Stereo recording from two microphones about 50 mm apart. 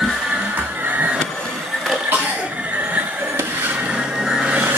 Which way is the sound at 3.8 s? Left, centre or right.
Right.